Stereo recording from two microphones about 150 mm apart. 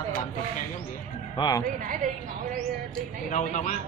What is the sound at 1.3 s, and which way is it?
Speech, 25° left (ahead or behind).